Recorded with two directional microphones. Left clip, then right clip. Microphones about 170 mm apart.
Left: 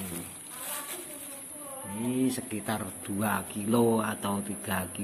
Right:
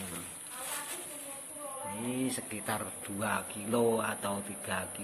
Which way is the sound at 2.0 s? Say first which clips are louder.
Left 7 dB; 5° left (ahead or behind).